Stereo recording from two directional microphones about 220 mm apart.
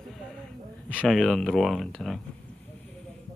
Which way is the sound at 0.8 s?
5° left (ahead or behind).